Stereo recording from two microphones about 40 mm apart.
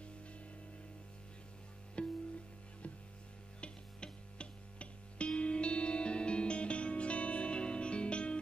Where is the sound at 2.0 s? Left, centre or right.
Left.